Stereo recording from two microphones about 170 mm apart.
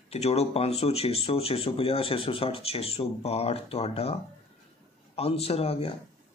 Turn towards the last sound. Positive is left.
turn(degrees=35)  # may be behind; listen again after turning